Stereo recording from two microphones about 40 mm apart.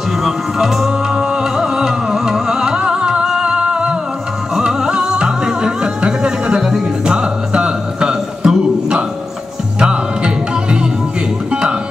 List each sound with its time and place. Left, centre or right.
0.2 s music: centre
9.8 s music: right